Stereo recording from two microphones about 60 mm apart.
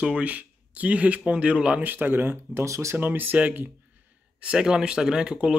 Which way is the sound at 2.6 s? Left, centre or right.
Right.